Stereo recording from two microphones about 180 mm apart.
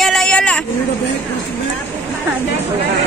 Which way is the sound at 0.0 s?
5° left (ahead or behind).